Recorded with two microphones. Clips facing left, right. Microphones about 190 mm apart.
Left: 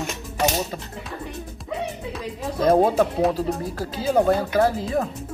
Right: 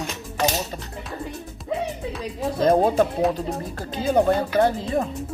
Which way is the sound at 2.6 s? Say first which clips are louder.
Left 1 dB; centre (ahead or behind).